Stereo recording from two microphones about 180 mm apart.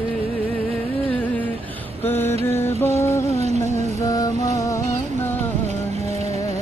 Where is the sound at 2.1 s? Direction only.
15° left (ahead or behind).